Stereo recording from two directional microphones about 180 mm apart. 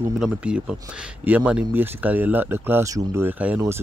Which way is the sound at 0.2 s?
5° right (ahead or behind).